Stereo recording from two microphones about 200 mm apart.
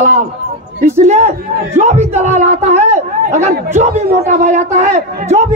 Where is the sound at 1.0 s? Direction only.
35° right (ahead or behind).